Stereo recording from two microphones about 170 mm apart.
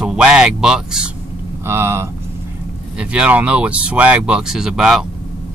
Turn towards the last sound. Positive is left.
turn(degrees=-5)  # may be behind; listen again after turning